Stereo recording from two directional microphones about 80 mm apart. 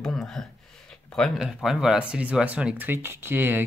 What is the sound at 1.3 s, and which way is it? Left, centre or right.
Speech, centre.